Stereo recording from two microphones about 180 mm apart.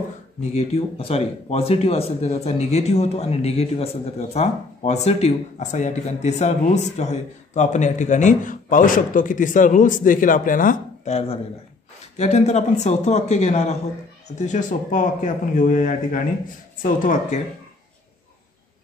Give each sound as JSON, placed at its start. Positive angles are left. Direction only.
{"t": 0.6, "sound": "speech", "side_deg": 35}